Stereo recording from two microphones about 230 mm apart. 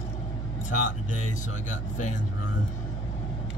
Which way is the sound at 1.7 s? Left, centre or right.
Left.